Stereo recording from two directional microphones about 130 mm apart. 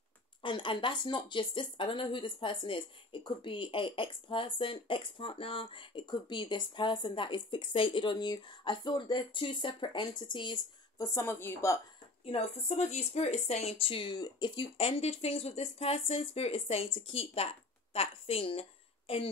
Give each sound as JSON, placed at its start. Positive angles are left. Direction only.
{"t": 0.4, "sound": "speech", "side_deg": 40}
{"t": 11.1, "sound": "a woman's voice", "side_deg": 20}
{"t": 12.3, "sound": "speech", "side_deg": 55}